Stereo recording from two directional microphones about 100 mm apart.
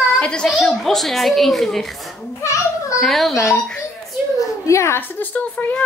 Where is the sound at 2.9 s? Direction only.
Centre (ahead or behind).